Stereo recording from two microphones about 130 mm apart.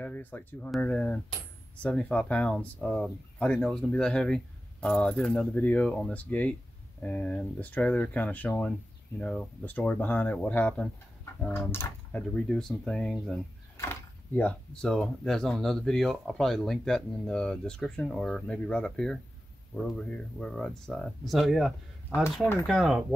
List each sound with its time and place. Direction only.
0.0 s speech: 15° left (ahead or behind)
12.2 s speech: 5° left (ahead or behind)
14.3 s speech: 10° left (ahead or behind)